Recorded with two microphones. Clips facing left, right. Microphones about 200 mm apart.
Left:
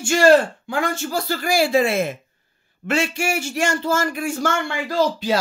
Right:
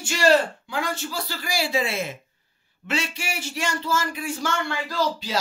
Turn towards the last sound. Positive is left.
turn(degrees=55)  # may be behind; listen again after turning